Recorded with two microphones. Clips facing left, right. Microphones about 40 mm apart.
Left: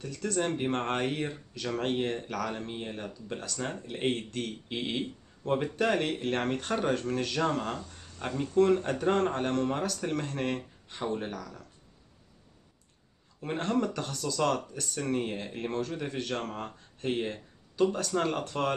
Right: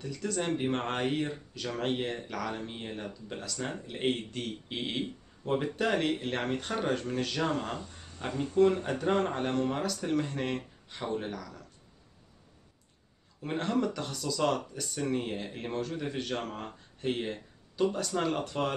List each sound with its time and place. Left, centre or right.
0.0 s speech: centre
0.3 s speech: centre
4.7 s speech: centre
5.0 s speech: centre
13.4 s speech: centre